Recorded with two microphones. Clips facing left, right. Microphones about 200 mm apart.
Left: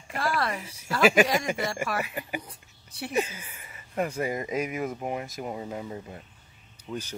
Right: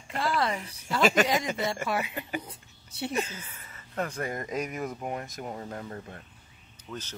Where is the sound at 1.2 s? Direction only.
20° right (ahead or behind).